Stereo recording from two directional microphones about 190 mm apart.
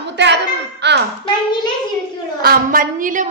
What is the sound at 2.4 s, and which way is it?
Speech, 50° right (ahead or behind).